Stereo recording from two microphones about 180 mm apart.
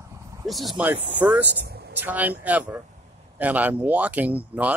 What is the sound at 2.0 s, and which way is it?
Speech, 10° right (ahead or behind).